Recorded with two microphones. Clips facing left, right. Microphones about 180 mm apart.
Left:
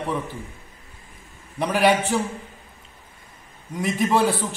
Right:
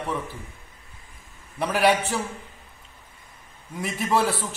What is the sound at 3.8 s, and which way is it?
Speech, centre (ahead or behind).